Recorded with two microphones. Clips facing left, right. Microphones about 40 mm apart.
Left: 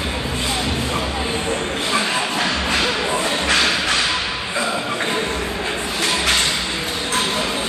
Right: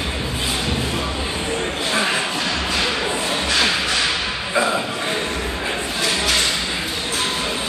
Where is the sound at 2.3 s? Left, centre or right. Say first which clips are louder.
Left 2 dB; left.